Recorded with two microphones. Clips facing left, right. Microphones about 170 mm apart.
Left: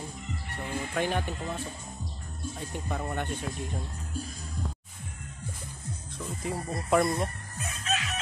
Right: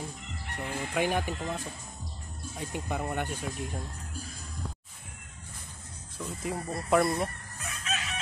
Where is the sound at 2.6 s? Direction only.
10° right (ahead or behind).